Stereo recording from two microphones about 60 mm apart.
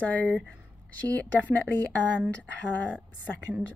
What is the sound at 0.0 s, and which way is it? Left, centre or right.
Speech, left.